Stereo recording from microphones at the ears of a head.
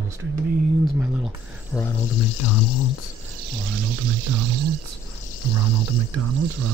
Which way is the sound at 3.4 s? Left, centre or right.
Right.